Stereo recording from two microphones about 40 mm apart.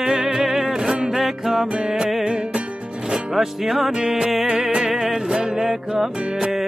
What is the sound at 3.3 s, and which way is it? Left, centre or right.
Music, centre.